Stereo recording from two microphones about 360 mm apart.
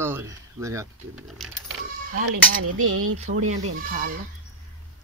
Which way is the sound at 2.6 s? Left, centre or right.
Right.